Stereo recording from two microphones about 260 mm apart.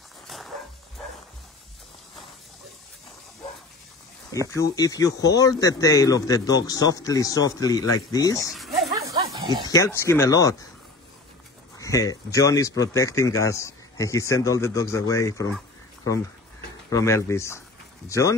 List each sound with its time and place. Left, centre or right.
4.5 s speech: centre
8.5 s a sound: centre
9.2 s snake: centre
9.7 s speech: centre
11.8 s speech: centre
16.9 s speech: centre